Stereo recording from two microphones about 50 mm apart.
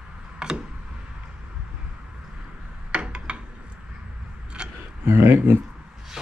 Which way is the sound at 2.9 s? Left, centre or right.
Right.